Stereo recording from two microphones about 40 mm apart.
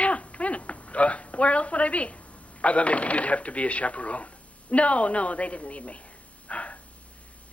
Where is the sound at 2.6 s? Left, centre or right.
Left.